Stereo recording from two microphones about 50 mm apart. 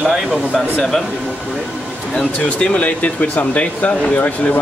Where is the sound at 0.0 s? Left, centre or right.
Centre.